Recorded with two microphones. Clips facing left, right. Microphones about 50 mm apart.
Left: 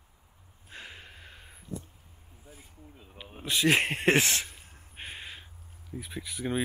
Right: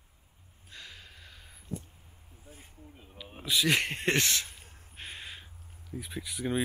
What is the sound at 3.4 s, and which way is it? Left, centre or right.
Speech, centre.